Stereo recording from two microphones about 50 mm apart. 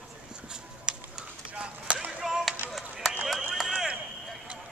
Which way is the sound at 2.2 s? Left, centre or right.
Centre.